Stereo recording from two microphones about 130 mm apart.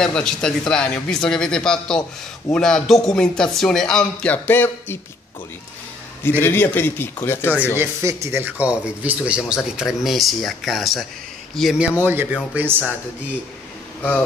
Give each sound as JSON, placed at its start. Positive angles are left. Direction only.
{"t": 0.0, "sound": "a man's voice", "side_deg": 5}
{"t": 6.2, "sound": "a man's voice", "side_deg": 15}
{"t": 7.7, "sound": "speech", "side_deg": -20}
{"t": 12.0, "sound": "speech", "side_deg": -15}